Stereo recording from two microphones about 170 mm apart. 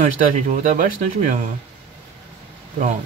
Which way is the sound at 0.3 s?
45° right (ahead or behind).